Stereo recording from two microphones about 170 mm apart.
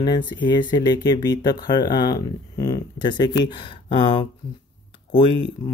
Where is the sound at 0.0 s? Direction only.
25° left (ahead or behind).